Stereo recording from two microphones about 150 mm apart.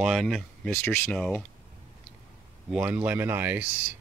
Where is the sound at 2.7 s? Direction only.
10° right (ahead or behind).